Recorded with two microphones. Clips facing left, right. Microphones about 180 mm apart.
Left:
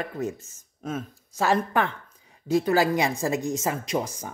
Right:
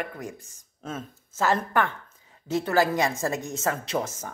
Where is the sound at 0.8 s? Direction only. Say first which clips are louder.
Left 4 dB; 10° left (ahead or behind).